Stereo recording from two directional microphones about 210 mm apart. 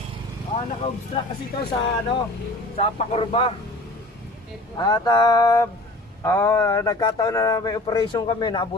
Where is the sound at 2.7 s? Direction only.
30° left (ahead or behind).